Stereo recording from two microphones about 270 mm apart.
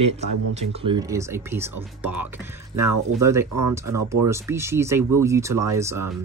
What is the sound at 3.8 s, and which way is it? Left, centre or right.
Speech, right.